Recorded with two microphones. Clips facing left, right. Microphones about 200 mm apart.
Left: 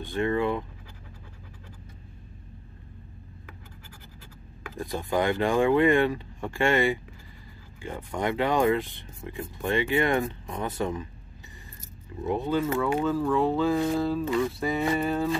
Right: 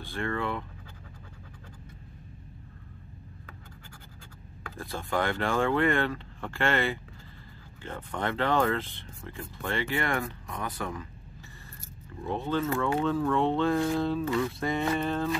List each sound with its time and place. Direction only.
0.0 s speech: 20° left (ahead or behind)
4.6 s speech: 15° left (ahead or behind)
12.3 s speech: 15° left (ahead or behind)